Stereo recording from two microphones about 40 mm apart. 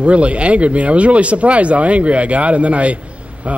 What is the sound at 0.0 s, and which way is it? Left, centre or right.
A man's voice, right.